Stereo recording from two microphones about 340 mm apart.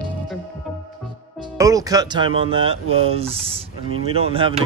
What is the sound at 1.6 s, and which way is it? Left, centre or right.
Speech, centre.